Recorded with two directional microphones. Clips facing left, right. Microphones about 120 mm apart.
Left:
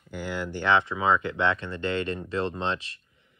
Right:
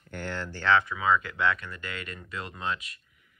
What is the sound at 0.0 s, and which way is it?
Speech, 5° left (ahead or behind).